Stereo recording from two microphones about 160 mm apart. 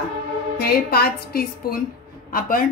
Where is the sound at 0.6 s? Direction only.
80° left.